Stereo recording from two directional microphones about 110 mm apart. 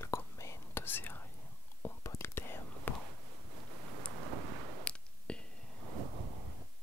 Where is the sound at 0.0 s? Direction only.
25° left (ahead or behind).